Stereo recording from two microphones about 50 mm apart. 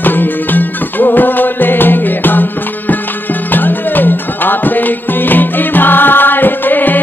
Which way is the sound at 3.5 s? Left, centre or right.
Left.